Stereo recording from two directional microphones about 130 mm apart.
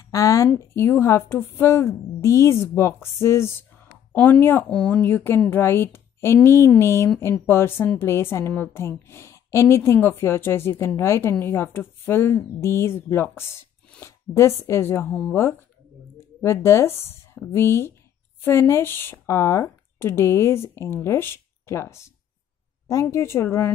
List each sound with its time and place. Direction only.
0.1 s a woman's voice: 25° left (ahead or behind)
16.2 s a woman's voice: 20° left (ahead or behind)